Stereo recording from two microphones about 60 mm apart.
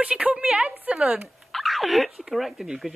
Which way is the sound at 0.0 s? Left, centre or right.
Centre.